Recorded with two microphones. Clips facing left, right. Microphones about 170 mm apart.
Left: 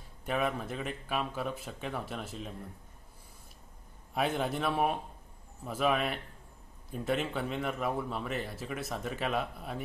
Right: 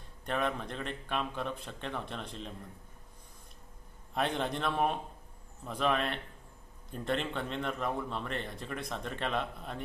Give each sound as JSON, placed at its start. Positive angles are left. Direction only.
{"t": 0.2, "sound": "a man's voice", "side_deg": 5}
{"t": 4.1, "sound": "a man's voice", "side_deg": 5}